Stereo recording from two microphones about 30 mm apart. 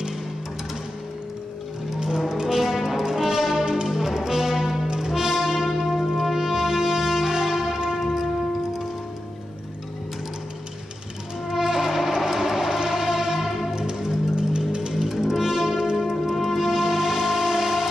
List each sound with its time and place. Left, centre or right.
2.0 s music: centre
4.8 s music: right
7.5 s church bell: centre
7.9 s a sound: centre
11.5 s music: centre
14.7 s music: right
15.0 s music: centre